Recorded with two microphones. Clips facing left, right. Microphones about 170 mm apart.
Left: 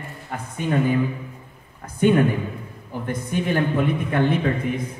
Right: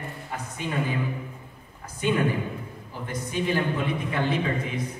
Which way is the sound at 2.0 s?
55° left (ahead or behind).